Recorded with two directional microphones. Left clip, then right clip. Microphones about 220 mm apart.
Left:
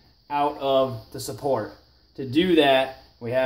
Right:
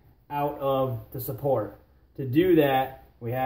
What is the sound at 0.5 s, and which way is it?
Speech, 40° left (ahead or behind).